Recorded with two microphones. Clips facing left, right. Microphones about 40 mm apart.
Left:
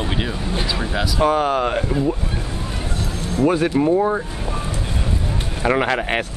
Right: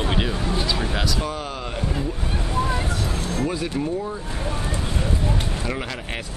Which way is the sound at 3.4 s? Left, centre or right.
Left.